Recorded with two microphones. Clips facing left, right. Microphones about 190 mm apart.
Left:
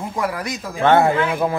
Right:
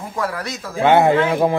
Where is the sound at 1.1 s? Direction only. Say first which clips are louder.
Right 3 dB; 25° right (ahead or behind).